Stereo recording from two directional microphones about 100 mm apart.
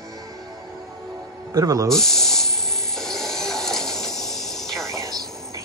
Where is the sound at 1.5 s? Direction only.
40° right (ahead or behind).